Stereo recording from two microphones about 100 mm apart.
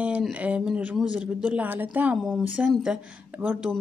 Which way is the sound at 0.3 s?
10° right (ahead or behind).